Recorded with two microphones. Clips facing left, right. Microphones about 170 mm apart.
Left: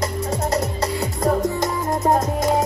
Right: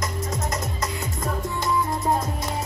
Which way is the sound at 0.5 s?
35° left (ahead or behind).